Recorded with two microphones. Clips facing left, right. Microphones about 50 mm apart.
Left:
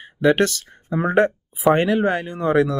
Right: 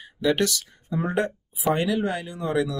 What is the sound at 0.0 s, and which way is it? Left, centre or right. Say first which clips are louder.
Speech: left 6 dB; left.